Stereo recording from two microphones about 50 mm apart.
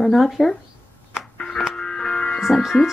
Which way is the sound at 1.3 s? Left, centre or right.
Centre.